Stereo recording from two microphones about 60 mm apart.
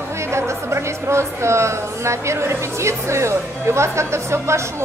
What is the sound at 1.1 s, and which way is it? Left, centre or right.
A woman's voice, right.